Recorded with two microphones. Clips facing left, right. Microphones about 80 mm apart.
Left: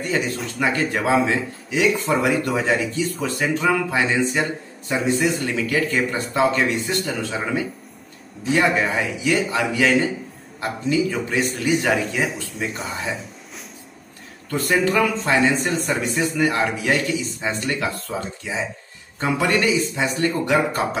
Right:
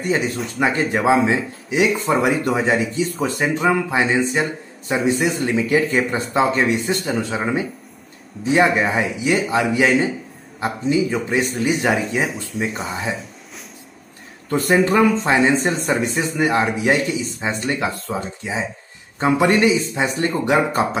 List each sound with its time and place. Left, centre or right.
0.6 s speech: right
12.2 s speech: centre
14.5 s speech: right